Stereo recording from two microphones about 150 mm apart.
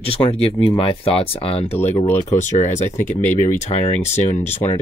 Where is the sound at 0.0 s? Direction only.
40° left (ahead or behind).